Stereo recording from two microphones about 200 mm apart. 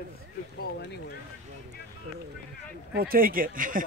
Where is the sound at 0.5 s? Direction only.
55° left (ahead or behind).